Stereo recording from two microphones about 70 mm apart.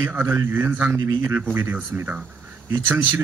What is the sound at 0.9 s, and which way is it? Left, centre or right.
Speech, right.